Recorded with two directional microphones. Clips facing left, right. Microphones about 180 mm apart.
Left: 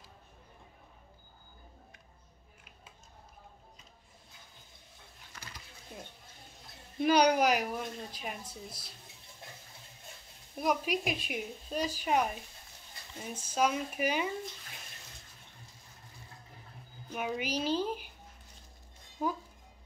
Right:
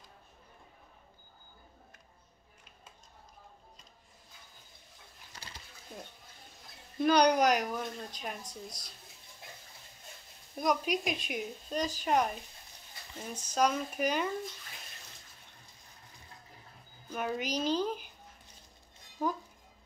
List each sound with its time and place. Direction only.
5.3 s a sound: 30° right (ahead or behind)
7.0 s speech: 5° left (ahead or behind)
10.5 s a woman's voice: 5° left (ahead or behind)
17.1 s speech: 5° left (ahead or behind)